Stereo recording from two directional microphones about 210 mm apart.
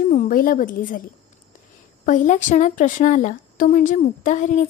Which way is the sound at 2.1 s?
35° left (ahead or behind).